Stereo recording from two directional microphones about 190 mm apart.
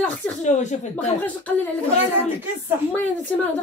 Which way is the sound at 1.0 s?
10° left (ahead or behind).